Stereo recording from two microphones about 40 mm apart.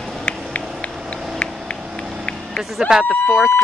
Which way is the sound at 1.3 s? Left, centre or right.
Left.